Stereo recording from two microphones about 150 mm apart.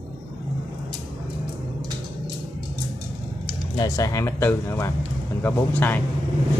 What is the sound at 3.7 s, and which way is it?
Speech, 20° left (ahead or behind).